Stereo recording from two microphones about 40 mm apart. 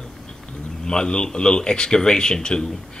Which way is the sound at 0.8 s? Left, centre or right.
Left.